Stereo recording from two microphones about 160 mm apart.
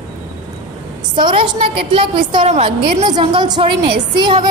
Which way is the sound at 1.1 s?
30° right (ahead or behind).